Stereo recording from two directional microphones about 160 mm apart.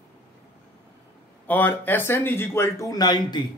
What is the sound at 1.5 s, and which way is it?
Speech, 10° left (ahead or behind).